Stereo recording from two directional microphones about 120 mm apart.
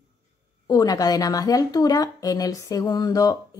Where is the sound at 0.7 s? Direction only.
30° left (ahead or behind).